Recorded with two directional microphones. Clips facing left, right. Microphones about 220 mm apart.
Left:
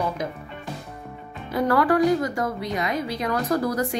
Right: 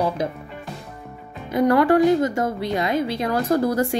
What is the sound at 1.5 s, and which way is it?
A woman's voice, 20° right (ahead or behind).